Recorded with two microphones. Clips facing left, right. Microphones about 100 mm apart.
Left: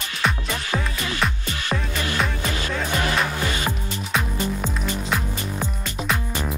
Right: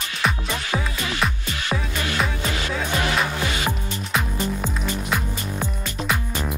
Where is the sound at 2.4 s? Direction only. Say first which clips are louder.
Even; 20° right (ahead or behind).